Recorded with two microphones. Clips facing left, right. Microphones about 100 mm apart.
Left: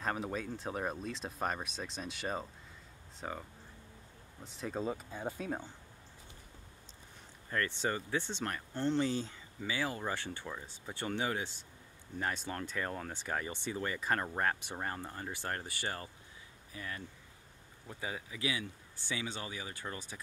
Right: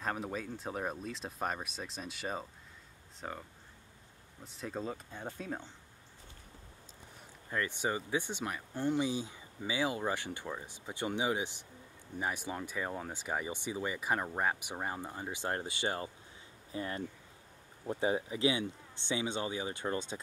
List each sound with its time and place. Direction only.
0.0 s speech: centre (ahead or behind)
7.4 s speech: 15° right (ahead or behind)